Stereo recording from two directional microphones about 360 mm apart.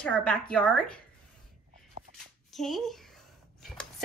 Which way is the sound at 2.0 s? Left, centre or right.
Centre.